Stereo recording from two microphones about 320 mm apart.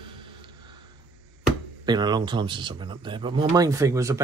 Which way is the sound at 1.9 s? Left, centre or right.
Centre.